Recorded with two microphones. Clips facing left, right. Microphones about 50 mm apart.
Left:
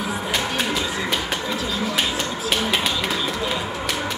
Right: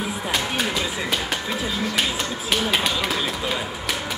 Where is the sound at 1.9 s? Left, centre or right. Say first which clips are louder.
Left 1 dB; centre.